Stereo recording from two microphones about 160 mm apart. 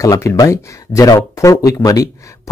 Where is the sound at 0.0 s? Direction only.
20° left (ahead or behind).